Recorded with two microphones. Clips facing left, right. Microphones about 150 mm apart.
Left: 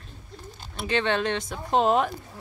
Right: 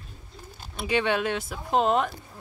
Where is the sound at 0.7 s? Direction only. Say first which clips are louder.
Even; 10° right (ahead or behind).